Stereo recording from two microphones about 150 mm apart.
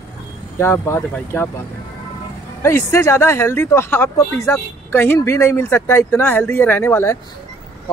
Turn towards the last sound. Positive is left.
turn(degrees=15)  # may be behind; listen again after turning